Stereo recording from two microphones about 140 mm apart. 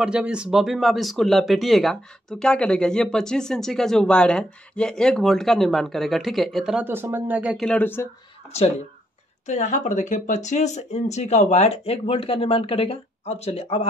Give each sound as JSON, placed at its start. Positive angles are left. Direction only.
{"t": 0.0, "sound": "speech", "side_deg": -5}
{"t": 6.8, "sound": "speech", "side_deg": -15}
{"t": 7.5, "sound": "speech", "side_deg": 5}
{"t": 7.8, "sound": "speech", "side_deg": 15}
{"t": 8.5, "sound": "speech", "side_deg": 50}